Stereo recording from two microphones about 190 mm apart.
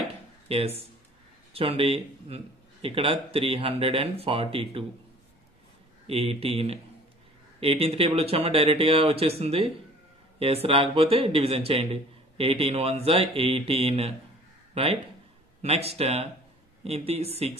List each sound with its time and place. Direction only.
0.5 s speech: 30° right (ahead or behind)
6.0 s a man's voice: 30° right (ahead or behind)